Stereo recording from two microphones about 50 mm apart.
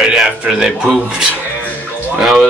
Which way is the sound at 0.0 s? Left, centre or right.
Centre.